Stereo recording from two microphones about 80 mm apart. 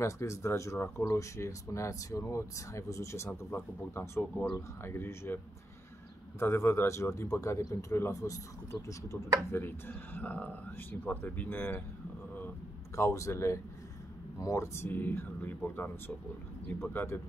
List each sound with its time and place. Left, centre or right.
0.0 s speech: left
6.4 s speech: left
9.5 s speech: left
12.9 s speech: left
14.9 s speech: left